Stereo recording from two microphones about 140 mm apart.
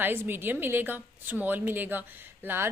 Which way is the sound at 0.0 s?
15° right (ahead or behind).